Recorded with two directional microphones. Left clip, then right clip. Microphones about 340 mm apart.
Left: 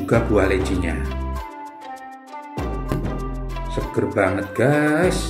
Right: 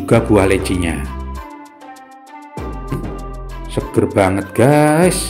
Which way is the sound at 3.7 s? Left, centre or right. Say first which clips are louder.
Right 6 dB; right.